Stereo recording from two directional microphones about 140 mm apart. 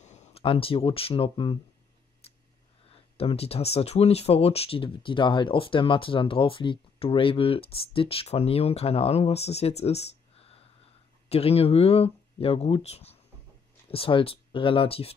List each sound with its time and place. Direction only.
0.0 s speech: 55° left (ahead or behind); by 1.6 s 40° left (ahead or behind)
2.2 s a sound: 45° left (ahead or behind)
3.2 s speech: 45° left (ahead or behind)